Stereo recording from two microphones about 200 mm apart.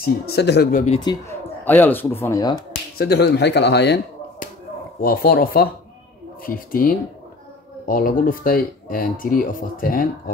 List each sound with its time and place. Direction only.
0.0 s speech: 55° left (ahead or behind)
1.1 s a man's voice: 20° left (ahead or behind)
1.6 s speech: 10° left (ahead or behind)
3.0 s a man's voice: 55° left (ahead or behind)
5.0 s speech: 50° left (ahead or behind)